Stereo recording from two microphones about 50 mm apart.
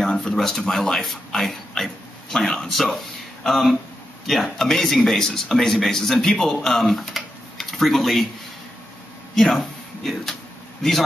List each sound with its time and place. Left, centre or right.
0.1 s a sound: centre
0.4 s speech: centre
9.3 s a man's voice: centre